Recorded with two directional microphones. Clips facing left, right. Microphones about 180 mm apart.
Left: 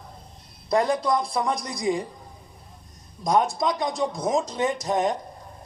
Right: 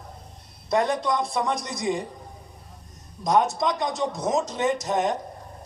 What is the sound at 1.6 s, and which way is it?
Speech, 20° right (ahead or behind).